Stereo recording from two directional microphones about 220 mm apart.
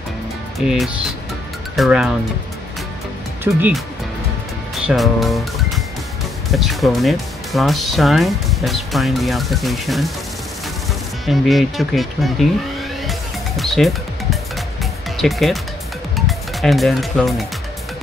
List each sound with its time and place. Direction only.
1.8 s speech: centre (ahead or behind)
3.5 s speech: 10° right (ahead or behind)
4.8 s speech: centre (ahead or behind)
11.2 s speech: centre (ahead or behind)
13.6 s music: centre (ahead or behind)
15.1 s speech: centre (ahead or behind)